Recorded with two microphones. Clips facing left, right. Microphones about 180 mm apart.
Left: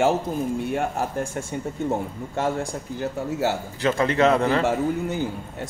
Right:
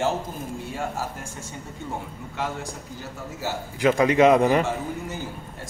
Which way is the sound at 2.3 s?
50° left (ahead or behind).